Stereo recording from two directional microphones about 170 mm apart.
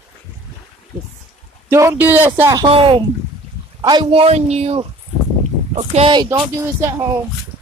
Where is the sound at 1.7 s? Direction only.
15° right (ahead or behind).